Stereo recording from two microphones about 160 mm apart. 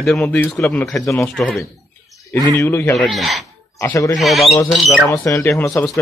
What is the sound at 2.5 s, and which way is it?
Speech, 15° left (ahead or behind).